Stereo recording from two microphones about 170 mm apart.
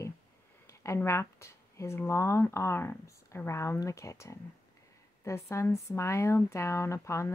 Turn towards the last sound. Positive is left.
turn(degrees=15)  # may be behind; listen again after turning